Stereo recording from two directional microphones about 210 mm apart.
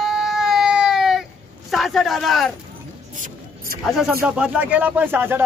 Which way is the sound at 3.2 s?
45° right (ahead or behind).